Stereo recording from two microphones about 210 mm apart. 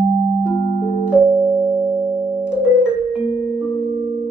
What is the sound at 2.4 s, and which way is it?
Music, 5° right (ahead or behind).